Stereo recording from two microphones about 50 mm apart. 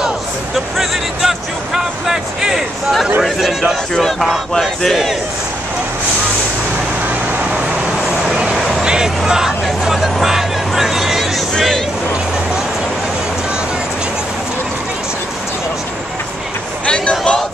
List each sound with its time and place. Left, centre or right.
0.7 s speech: centre
3.9 s speech: centre
8.8 s hubbub: centre
10.2 s music: centre
16.8 s a sound: left